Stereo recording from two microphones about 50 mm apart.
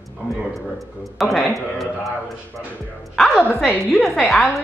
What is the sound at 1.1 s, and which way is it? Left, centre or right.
Speech, centre.